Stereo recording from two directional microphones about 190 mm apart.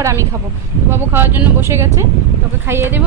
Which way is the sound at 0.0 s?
15° right (ahead or behind).